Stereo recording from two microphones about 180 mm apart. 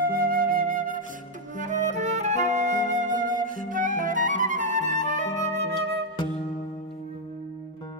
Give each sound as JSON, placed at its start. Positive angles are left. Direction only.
{"t": 0.0, "sound": "flute", "side_deg": -50}